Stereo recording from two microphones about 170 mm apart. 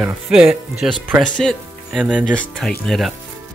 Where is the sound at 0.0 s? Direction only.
5° right (ahead or behind).